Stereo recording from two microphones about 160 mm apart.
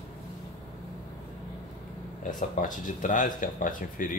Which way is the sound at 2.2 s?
55° left (ahead or behind).